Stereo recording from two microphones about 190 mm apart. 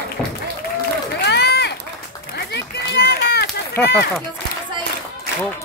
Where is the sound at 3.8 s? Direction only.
10° left (ahead or behind).